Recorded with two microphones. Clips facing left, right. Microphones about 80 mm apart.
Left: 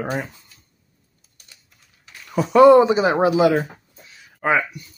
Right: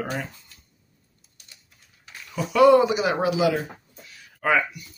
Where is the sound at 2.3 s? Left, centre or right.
Left.